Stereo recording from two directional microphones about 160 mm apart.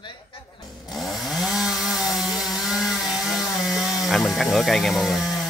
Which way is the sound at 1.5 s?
5° right (ahead or behind).